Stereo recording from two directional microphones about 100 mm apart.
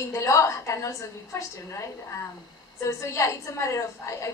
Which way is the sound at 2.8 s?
30° left (ahead or behind).